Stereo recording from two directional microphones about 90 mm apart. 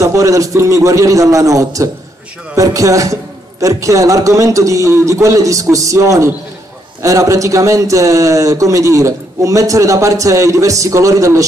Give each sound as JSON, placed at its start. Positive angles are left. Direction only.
{"t": 0.0, "sound": "a man's voice", "side_deg": -35}